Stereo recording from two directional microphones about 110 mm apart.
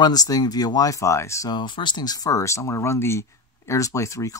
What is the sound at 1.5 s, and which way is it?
Speech, 45° left (ahead or behind).